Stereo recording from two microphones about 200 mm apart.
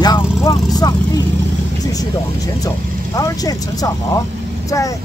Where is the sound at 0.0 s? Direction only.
20° left (ahead or behind).